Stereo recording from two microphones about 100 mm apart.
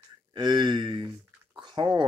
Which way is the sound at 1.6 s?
45° right (ahead or behind).